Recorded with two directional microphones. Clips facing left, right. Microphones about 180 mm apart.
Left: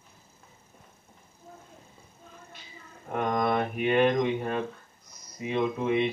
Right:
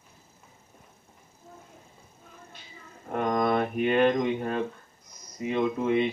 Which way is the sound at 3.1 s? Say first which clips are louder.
Right 1 dB; centre (ahead or behind).